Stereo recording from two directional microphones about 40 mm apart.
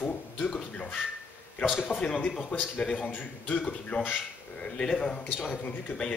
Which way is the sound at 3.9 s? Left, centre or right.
Left.